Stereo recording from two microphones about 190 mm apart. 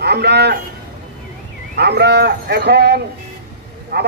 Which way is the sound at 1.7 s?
60° right (ahead or behind).